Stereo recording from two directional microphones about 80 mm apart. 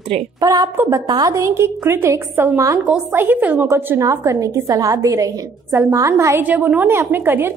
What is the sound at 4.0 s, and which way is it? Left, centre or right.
A woman's voice, right.